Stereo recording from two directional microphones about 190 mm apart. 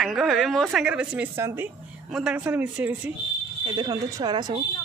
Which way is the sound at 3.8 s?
20° right (ahead or behind).